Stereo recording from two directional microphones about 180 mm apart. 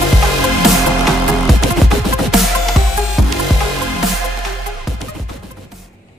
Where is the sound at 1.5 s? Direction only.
Centre (ahead or behind).